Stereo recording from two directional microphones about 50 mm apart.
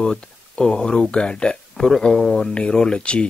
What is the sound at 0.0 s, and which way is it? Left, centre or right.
Speech, centre.